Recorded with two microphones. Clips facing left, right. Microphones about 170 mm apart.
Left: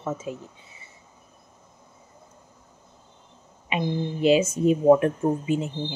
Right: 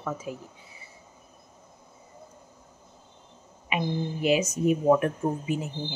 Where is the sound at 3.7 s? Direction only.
25° left (ahead or behind).